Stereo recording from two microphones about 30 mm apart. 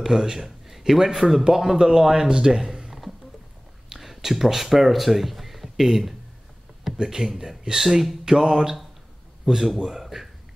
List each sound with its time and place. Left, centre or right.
0.0 s speech: centre
2.6 s a sound: centre
3.9 s speech: centre